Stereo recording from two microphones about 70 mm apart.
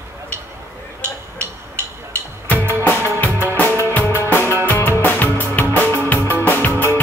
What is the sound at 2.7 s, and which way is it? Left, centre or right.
Music, left.